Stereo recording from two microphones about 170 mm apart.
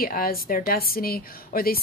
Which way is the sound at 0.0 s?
60° left (ahead or behind).